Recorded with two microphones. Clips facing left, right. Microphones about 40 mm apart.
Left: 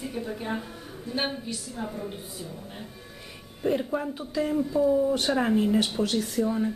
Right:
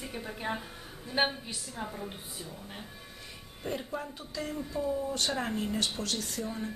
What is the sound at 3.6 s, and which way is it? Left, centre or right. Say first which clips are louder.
Speech: left 9 dB; centre.